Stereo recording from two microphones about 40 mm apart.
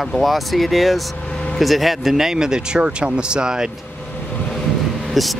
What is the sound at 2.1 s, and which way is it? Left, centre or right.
Speech, centre.